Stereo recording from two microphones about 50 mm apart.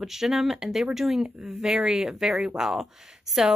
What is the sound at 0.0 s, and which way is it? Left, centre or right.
Speech, centre.